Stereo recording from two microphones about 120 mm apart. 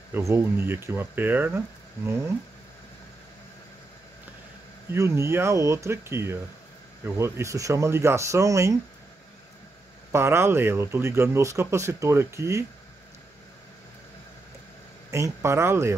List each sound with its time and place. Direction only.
0.1 s speech: 20° right (ahead or behind)
4.9 s speech: 20° right (ahead or behind)
10.1 s speech: 20° right (ahead or behind)
15.0 s speech: 25° right (ahead or behind)